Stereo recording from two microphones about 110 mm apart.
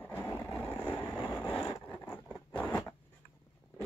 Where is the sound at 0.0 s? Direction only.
15° left (ahead or behind).